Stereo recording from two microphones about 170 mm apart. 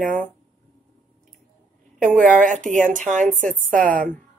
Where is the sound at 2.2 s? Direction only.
50° right (ahead or behind).